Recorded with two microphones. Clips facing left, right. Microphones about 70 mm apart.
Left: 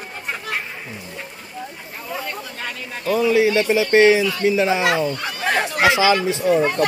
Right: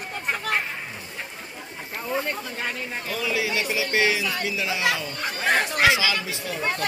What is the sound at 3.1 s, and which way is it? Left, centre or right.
Speech, left.